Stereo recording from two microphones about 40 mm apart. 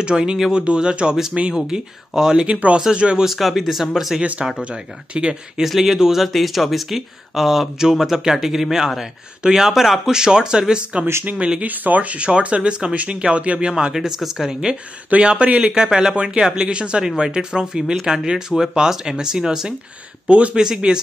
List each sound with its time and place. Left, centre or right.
0.0 s speech: right
2.4 s speech: right
3.3 s speech: centre
4.2 s speech: right
5.6 s speech: centre
10.1 s speech: centre
10.7 s speech: right
11.6 s speech: right
13.9 s speech: centre
15.2 s speech: right; by 19.7 s centre
20.2 s speech: right
20.5 s speech: centre